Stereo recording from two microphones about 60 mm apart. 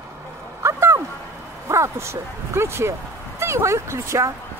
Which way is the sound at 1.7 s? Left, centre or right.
Right.